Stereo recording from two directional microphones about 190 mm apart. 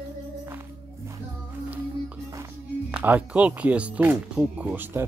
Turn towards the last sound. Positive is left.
turn(degrees=-10)  # may be behind; listen again after turning